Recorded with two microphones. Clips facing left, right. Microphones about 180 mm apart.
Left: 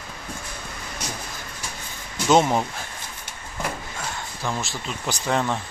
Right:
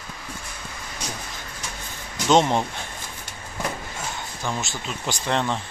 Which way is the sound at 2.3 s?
5° left (ahead or behind).